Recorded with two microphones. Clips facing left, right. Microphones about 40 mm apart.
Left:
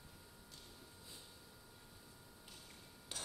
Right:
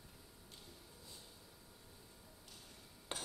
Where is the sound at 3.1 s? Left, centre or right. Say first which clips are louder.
Right 3 dB; right.